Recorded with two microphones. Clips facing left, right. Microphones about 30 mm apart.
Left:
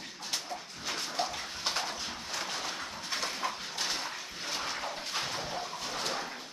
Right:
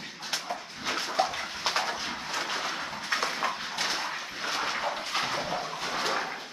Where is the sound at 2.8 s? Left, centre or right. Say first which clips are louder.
Right 6 dB; right.